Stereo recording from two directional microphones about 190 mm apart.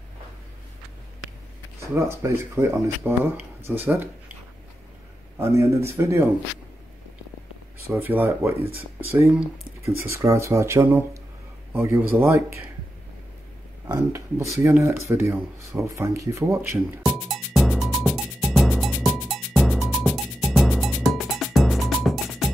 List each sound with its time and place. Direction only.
1.8 s speech: 15° right (ahead or behind)
5.4 s speech: 15° right (ahead or behind)
7.8 s speech: 10° right (ahead or behind)
13.8 s speech: 15° right (ahead or behind)
17.0 s music: centre (ahead or behind)
20.5 s cowbell: centre (ahead or behind)